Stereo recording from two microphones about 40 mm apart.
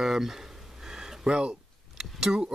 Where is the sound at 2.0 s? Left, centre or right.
Centre.